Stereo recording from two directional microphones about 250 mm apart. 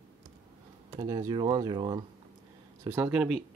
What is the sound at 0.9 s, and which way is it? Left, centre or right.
Speech, centre.